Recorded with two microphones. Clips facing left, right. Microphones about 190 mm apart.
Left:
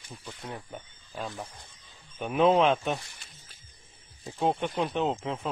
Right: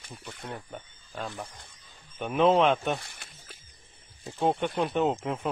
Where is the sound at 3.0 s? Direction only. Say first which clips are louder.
Right 5 dB; 60° right (ahead or behind).